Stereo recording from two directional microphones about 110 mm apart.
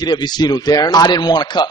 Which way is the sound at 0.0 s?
40° left (ahead or behind).